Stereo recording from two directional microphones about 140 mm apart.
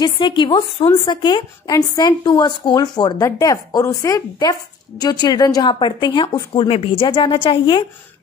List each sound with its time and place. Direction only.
0.0 s a woman's voice: 35° left (ahead or behind)